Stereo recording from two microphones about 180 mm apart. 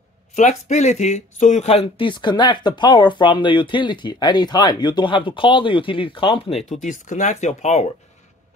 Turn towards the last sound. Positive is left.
turn(degrees=40)  # may be behind; listen again after turning